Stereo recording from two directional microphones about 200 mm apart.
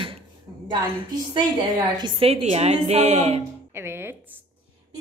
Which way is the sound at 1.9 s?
25° right (ahead or behind).